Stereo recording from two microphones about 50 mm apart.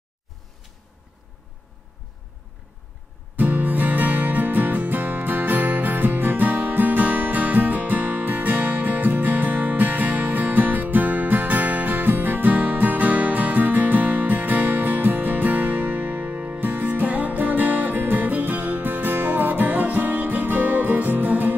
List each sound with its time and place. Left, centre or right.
3.3 s music: right